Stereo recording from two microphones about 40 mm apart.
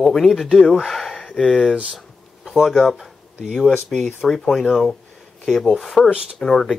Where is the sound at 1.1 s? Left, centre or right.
Left.